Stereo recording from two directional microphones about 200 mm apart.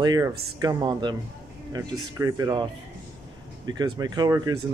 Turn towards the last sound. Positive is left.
turn(degrees=-20)  # may be behind; listen again after turning